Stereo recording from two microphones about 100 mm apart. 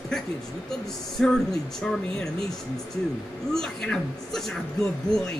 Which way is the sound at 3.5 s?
5° left (ahead or behind).